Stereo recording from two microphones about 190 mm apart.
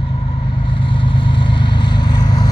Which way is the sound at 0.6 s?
25° left (ahead or behind).